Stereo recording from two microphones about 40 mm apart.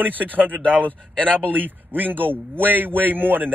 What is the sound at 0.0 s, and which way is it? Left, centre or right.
Speech, right.